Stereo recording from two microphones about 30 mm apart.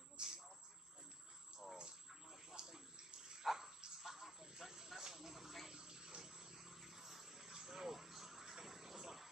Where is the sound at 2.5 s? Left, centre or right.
Right.